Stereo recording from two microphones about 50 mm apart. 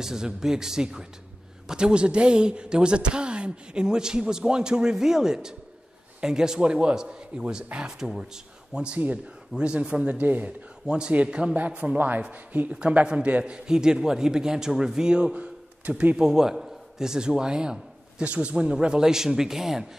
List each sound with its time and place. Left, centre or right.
0.0 s speech: centre
10.0 s speech: right
10.9 s speech: centre
15.3 s a sound: right
16.2 s a man's voice: centre